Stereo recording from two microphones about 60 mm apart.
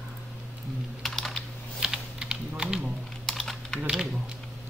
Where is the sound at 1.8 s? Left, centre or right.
Centre.